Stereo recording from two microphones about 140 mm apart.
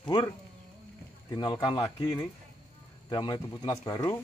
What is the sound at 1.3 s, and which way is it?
Speech, 30° left (ahead or behind).